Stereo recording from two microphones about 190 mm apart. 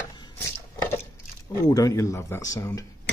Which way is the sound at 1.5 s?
15° left (ahead or behind).